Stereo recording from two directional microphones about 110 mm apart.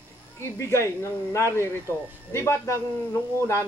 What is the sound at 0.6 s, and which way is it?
Speech, 25° left (ahead or behind).